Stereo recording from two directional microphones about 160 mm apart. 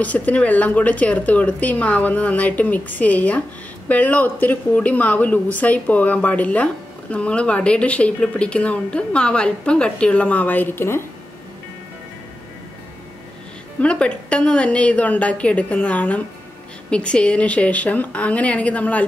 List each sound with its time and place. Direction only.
0.0 s speech: 10° left (ahead or behind)
13.7 s speech: 5° left (ahead or behind)